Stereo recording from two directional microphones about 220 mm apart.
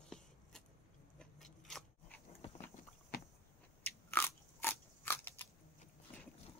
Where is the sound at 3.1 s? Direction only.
40° left (ahead or behind).